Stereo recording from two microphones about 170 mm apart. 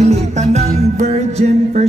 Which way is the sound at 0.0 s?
40° right (ahead or behind).